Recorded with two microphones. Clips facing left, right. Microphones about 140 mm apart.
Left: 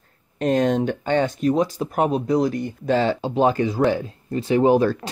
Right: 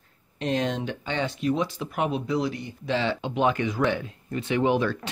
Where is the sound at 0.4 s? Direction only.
45° left (ahead or behind).